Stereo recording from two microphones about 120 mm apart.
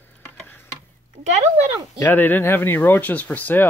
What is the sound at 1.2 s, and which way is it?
Speech, 65° right (ahead or behind).